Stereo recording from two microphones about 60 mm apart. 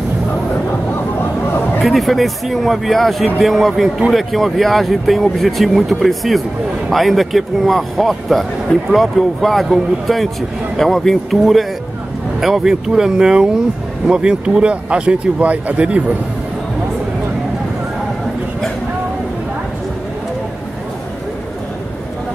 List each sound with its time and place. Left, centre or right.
1.8 s speech: centre; by 16.0 s right